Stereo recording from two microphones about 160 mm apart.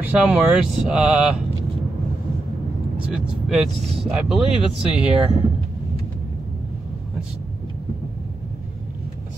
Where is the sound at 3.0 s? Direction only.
5° right (ahead or behind).